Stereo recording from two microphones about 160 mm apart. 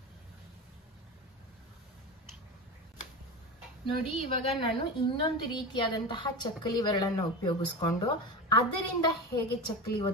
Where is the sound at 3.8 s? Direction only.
35° left (ahead or behind).